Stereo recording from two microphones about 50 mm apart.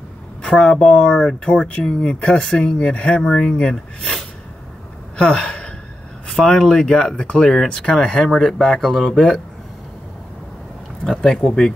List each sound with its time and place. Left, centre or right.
0.4 s speech: centre
5.1 s gasp: centre
6.2 s speech: centre
11.1 s speech: centre